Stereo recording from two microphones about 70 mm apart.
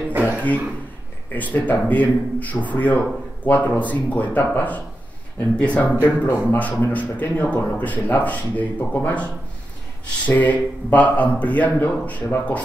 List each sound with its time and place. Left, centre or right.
0.1 s speech: right
1.3 s speech: left
5.9 s speech: left